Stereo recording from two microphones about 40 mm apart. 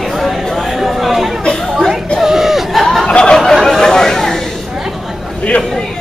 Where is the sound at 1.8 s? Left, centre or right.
Centre.